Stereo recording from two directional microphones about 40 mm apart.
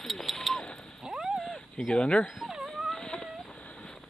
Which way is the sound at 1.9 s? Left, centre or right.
Left.